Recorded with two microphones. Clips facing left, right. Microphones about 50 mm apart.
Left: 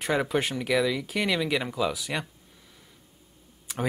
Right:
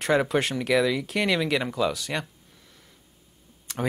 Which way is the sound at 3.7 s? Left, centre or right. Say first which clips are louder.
Right 1 dB; centre.